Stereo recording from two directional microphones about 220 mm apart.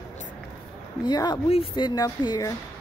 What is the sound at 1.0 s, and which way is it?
Speech, 20° left (ahead or behind).